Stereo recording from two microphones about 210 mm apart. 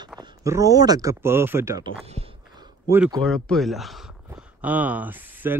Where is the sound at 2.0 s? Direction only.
30° right (ahead or behind).